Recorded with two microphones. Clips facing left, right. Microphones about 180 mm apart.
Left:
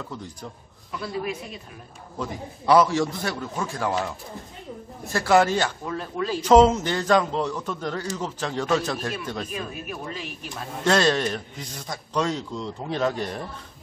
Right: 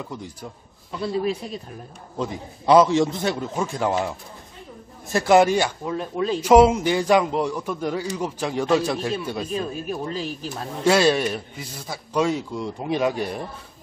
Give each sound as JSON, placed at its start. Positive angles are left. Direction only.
{"t": 0.0, "sound": "a man's voice", "side_deg": -10}
{"t": 0.9, "sound": "a man's voice", "side_deg": -25}
{"t": 2.1, "sound": "a man's voice", "side_deg": -20}
{"t": 5.1, "sound": "a man's voice", "side_deg": -20}
{"t": 9.5, "sound": "speech", "side_deg": -30}
{"t": 10.5, "sound": "a man's voice", "side_deg": -10}